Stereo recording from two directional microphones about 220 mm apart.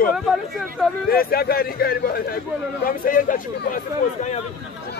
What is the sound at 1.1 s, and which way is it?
Speech, 45° left (ahead or behind).